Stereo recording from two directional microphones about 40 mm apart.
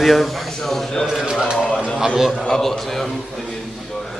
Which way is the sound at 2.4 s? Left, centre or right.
Centre.